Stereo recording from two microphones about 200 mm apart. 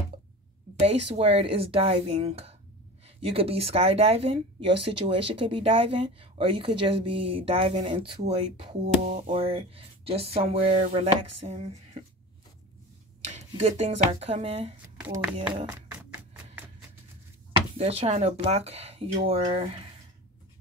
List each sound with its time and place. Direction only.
0.8 s speech: 30° right (ahead or behind)
13.2 s speech: 35° right (ahead or behind)
15.0 s a woman's voice: 10° right (ahead or behind)
17.5 s speech: 30° right (ahead or behind)